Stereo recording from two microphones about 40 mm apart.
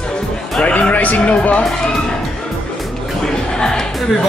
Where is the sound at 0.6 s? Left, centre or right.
Left.